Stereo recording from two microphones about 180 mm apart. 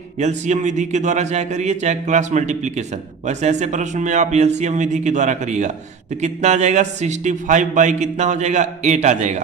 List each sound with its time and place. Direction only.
0.2 s a man's voice: 40° right (ahead or behind)